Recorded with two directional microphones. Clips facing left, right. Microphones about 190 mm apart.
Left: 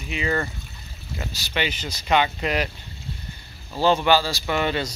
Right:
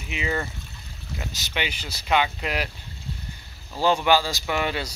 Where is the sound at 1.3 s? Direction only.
15° right (ahead or behind).